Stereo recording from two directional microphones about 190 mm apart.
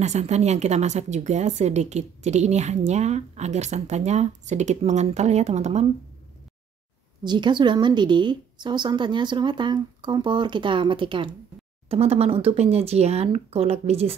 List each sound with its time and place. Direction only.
0.0 s speech: 35° right (ahead or behind)
7.2 s a woman's voice: 25° right (ahead or behind)